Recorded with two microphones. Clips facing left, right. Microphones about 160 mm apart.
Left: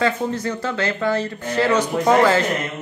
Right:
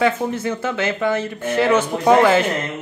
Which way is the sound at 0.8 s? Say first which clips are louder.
Right 1 dB; 20° right (ahead or behind).